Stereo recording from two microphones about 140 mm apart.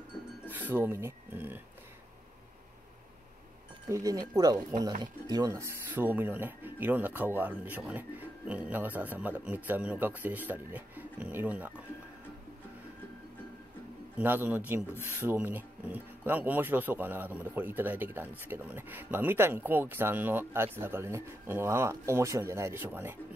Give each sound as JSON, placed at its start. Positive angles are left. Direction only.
{"t": 0.5, "sound": "speech", "side_deg": -15}
{"t": 3.9, "sound": "speech", "side_deg": -25}
{"t": 14.1, "sound": "speech", "side_deg": -15}